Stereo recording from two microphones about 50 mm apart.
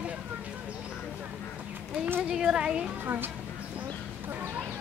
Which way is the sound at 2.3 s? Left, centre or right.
Centre.